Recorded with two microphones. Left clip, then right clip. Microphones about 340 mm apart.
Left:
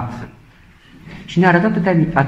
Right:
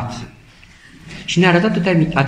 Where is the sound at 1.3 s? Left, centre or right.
Centre.